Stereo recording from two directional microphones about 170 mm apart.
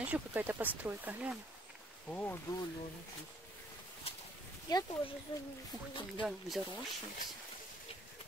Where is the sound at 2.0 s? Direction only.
10° left (ahead or behind).